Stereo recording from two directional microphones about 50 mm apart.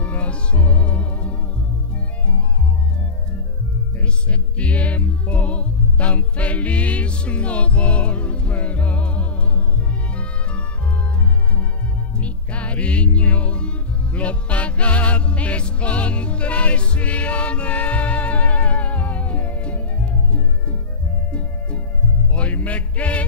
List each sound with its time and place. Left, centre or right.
0.0 s music: left
4.0 s music: left
12.2 s music: left